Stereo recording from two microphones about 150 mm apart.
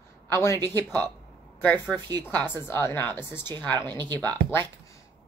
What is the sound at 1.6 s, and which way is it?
Speech, 10° left (ahead or behind).